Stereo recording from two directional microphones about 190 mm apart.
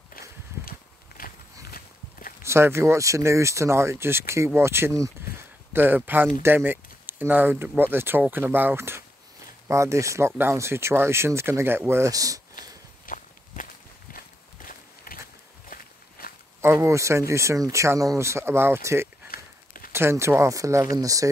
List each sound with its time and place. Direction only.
0.7 s walk: 50° left (ahead or behind)
2.4 s speech: 15° right (ahead or behind)
13.0 s walk: 45° left (ahead or behind)
16.6 s speech: 15° right (ahead or behind)
19.3 s a sound: 45° left (ahead or behind)
19.9 s speech: 15° right (ahead or behind)